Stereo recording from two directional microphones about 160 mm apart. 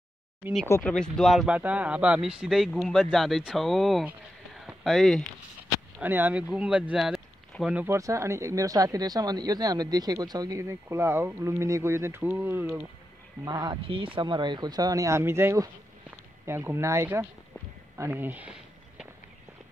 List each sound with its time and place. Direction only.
0.7 s speech: 15° left (ahead or behind)
0.9 s speech: 5° left (ahead or behind)
4.6 s a sound: centre (ahead or behind)
5.9 s speech: 10° right (ahead or behind)
7.8 s speech: 20° right (ahead or behind)
17.9 s walk: 15° right (ahead or behind)